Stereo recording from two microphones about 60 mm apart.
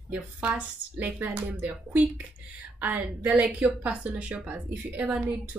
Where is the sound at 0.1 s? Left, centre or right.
Right.